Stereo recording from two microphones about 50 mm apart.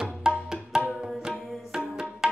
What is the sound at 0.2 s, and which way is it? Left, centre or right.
Music, centre.